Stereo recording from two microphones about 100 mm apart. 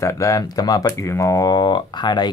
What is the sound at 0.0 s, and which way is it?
Mantra, 35° left (ahead or behind).